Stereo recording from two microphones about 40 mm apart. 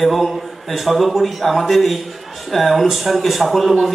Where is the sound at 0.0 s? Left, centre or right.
Centre.